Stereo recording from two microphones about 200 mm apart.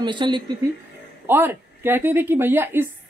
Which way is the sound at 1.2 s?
10° right (ahead or behind).